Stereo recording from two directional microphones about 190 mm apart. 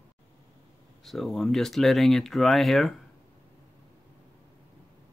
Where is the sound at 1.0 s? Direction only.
Centre (ahead or behind).